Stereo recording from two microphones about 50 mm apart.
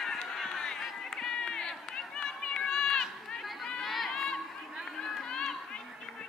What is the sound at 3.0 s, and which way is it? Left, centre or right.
Run, centre.